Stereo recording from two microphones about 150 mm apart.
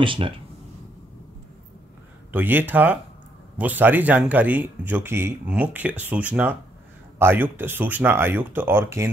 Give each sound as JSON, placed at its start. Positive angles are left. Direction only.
{"t": 0.0, "sound": "speech", "side_deg": -35}
{"t": 2.3, "sound": "speech", "side_deg": -15}